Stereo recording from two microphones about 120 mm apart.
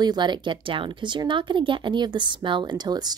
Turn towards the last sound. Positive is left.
turn(degrees=-35)  # may be behind; listen again after turning